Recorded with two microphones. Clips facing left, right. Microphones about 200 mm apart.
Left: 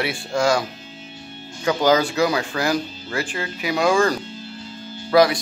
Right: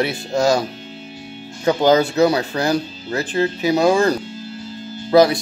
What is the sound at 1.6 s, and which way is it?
Speech, 25° right (ahead or behind).